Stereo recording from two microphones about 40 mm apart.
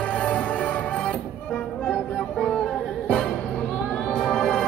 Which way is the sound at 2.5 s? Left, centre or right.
Left.